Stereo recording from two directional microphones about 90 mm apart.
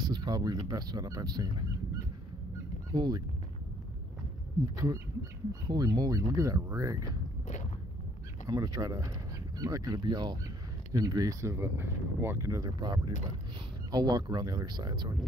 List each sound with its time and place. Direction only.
0.0 s speech: 50° right (ahead or behind)
2.9 s speech: 50° right (ahead or behind)
4.7 s speech: 40° right (ahead or behind)
5.7 s speech: 50° right (ahead or behind)
8.5 s speech: 40° right (ahead or behind)